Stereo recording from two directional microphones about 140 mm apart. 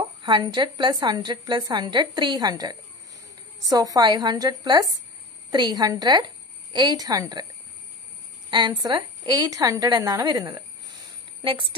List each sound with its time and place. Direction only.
0.2 s a woman's voice: 35° right (ahead or behind)
8.5 s a woman's voice: 30° right (ahead or behind)